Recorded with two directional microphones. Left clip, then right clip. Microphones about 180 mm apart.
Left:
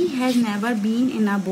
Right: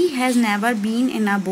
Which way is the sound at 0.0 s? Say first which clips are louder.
Right 3 dB; 15° right (ahead or behind).